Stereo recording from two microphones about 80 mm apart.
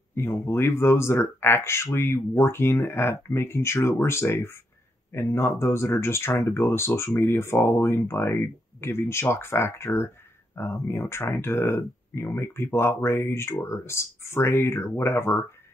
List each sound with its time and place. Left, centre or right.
0.1 s speech: left